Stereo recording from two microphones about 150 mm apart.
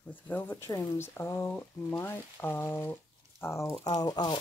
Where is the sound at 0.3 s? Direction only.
10° left (ahead or behind).